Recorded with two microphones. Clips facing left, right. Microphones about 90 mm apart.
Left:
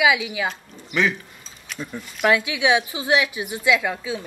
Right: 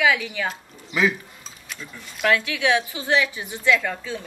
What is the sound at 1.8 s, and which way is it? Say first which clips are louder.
Speech: left 9 dB; 40° left (ahead or behind).